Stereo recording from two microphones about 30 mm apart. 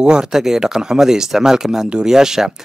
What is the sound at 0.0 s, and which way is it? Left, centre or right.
Speech, right.